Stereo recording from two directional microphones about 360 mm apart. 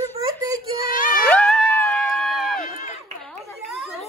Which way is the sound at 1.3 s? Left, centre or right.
Centre.